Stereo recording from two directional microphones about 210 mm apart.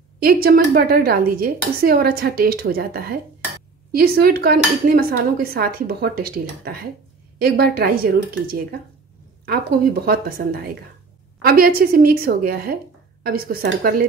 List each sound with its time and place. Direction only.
0.2 s a woman's voice: 45° right (ahead or behind)